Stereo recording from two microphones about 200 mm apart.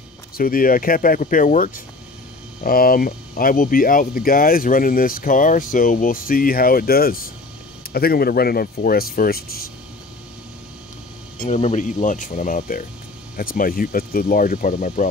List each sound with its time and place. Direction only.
0.4 s speech: 45° left (ahead or behind)
11.4 s speech: 35° left (ahead or behind)